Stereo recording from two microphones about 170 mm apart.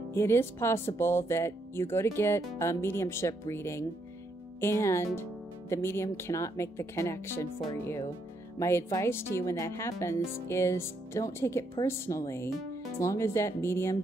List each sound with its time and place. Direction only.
0.1 s speech: 15° left (ahead or behind)